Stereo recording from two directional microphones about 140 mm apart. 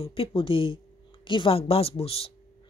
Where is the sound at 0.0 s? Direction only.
40° left (ahead or behind).